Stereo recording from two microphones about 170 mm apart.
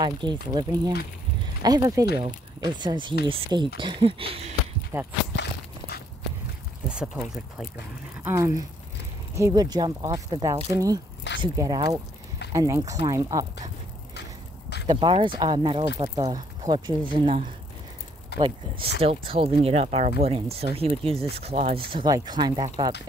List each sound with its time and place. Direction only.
0.0 s speech: 25° right (ahead or behind)
4.9 s speech: 10° right (ahead or behind)
5.3 s a sound: 75° left (ahead or behind)
6.9 s speech: 5° right (ahead or behind)
8.2 s speech: 20° right (ahead or behind)
14.9 s speech: 30° right (ahead or behind)
18.4 s speech: 35° right (ahead or behind)